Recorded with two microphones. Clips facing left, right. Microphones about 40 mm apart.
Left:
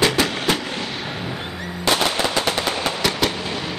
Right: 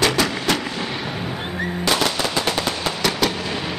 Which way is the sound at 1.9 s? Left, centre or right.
Centre.